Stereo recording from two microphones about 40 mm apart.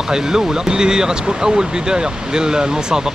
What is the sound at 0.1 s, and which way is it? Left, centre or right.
Speech, centre.